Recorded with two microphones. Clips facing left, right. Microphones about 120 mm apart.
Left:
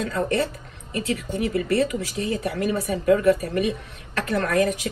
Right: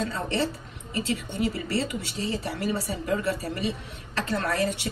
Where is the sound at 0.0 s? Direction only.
30° right (ahead or behind).